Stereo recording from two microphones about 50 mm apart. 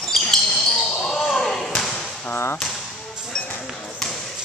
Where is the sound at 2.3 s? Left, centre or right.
Left.